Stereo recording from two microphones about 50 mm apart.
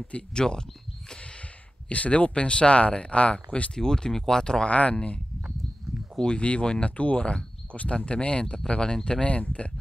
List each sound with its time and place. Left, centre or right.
0.1 s speech: centre
1.9 s speech: left
4.7 s speech: left
6.2 s speech: left